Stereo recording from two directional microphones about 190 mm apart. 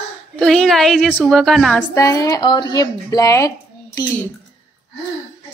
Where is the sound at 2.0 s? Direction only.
15° left (ahead or behind).